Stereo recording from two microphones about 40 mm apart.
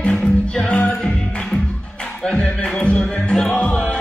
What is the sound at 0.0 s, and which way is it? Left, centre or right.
Music, left.